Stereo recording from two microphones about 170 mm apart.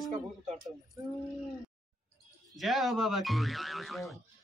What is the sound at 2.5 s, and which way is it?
Speech, centre (ahead or behind).